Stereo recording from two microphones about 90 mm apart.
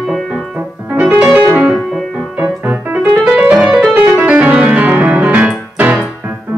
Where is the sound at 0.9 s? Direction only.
15° right (ahead or behind).